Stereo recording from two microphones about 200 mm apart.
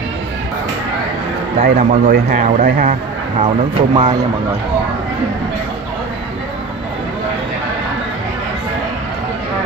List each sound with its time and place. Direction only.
1.6 s speech: 35° right (ahead or behind)
3.4 s speech: 25° right (ahead or behind)